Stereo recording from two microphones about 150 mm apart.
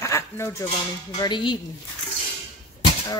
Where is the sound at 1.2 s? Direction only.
30° left (ahead or behind).